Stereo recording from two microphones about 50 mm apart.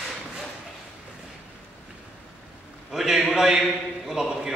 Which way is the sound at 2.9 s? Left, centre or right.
Centre.